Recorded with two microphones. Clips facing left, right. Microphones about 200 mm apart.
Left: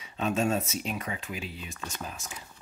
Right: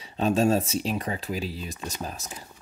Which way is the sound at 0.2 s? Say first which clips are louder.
Right 5 dB; 35° right (ahead or behind).